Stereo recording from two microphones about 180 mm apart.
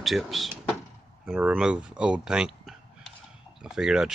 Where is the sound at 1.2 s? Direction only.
5° right (ahead or behind).